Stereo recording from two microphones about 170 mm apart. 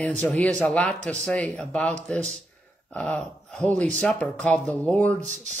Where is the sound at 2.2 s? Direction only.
40° right (ahead or behind).